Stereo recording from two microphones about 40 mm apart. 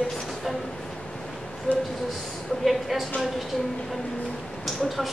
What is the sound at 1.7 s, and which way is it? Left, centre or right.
Speech, left.